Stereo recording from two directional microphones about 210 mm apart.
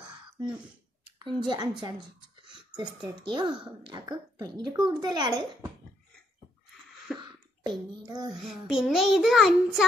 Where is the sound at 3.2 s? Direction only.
20° right (ahead or behind).